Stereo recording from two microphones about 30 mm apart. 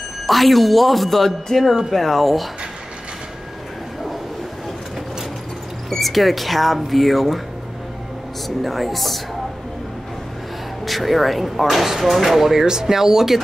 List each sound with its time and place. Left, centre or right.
0.3 s speech: centre
5.9 s speech: centre
8.5 s speech: centre
10.9 s speech: centre